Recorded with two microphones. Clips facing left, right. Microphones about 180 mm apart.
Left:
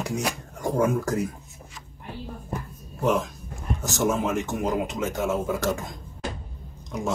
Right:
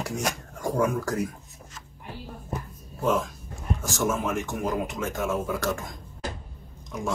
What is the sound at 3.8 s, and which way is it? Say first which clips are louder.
Speech: left 3 dB; 20° left (ahead or behind).